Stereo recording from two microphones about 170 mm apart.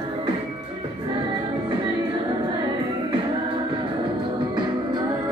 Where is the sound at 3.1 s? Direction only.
30° right (ahead or behind).